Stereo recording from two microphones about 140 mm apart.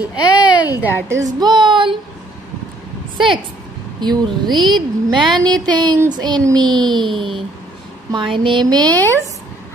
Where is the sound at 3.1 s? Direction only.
35° right (ahead or behind).